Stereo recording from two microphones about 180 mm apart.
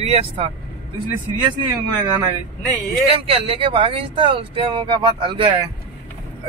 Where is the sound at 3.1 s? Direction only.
30° right (ahead or behind).